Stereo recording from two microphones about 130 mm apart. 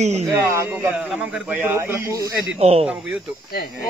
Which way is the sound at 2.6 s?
50° right (ahead or behind).